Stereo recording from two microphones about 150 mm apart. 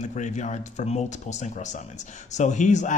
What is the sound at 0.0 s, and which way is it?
Speech, 55° left (ahead or behind).